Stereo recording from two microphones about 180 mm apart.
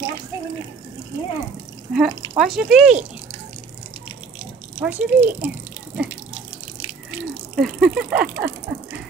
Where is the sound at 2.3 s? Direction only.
5° right (ahead or behind).